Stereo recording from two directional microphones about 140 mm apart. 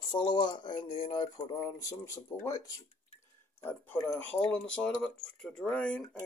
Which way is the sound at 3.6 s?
15° left (ahead or behind).